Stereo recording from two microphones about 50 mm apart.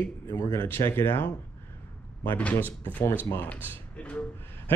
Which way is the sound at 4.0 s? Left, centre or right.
Left.